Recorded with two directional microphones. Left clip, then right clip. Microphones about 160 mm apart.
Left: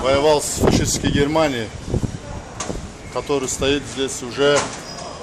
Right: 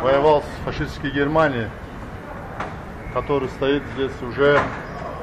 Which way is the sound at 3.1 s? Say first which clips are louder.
Even; 60° left (ahead or behind).